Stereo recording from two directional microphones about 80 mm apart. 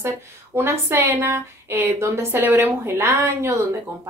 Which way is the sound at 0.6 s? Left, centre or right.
Right.